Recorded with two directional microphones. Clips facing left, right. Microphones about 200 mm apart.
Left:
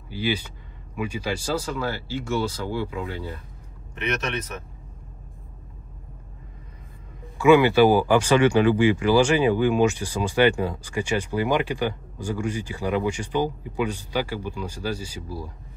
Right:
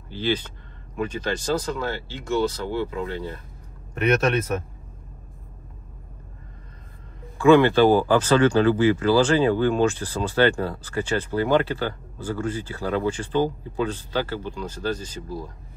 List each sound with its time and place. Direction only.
0.1 s speech: 10° left (ahead or behind)
7.3 s speech: 10° left (ahead or behind)